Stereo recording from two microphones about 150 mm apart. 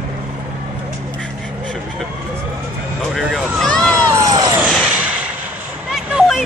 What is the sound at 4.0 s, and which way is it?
Cat, 25° right (ahead or behind).